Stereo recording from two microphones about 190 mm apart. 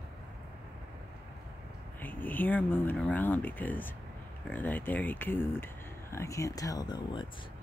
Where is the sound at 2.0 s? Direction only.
10° left (ahead or behind).